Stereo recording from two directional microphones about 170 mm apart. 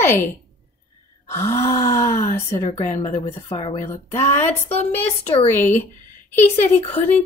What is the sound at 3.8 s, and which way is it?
Speech, 15° left (ahead or behind).